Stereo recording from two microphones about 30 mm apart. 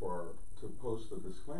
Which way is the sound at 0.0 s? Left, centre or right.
Centre.